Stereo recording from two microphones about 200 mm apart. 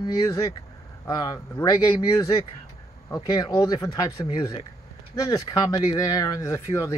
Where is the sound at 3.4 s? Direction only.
15° left (ahead or behind).